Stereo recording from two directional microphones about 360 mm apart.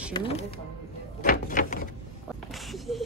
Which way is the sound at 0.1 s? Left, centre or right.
Centre.